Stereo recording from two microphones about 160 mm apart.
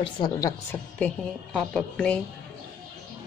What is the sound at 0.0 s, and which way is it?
Speech, 25° left (ahead or behind).